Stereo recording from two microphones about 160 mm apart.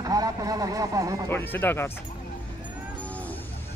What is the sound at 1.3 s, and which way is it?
Speech, 10° left (ahead or behind).